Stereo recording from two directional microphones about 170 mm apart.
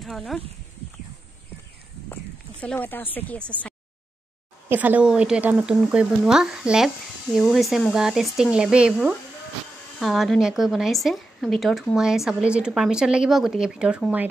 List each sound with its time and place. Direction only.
0.0 s speech: centre (ahead or behind)
2.6 s speech: 10° left (ahead or behind)
4.6 s a woman's voice: 10° right (ahead or behind)
9.9 s a woman's voice: centre (ahead or behind)